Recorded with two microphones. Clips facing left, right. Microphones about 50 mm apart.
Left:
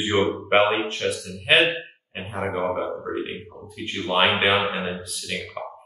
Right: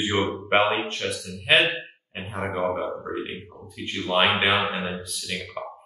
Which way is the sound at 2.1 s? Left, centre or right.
Centre.